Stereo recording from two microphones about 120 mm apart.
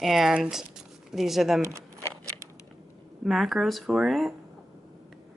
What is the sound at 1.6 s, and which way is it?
Speech, 25° right (ahead or behind).